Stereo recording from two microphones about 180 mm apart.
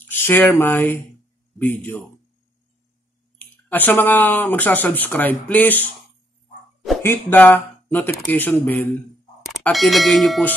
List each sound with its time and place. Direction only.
0.0 s speech: 10° left (ahead or behind)
3.3 s speech: 10° left (ahead or behind)
7.0 s speech: 10° left (ahead or behind)
9.5 s speech: centre (ahead or behind)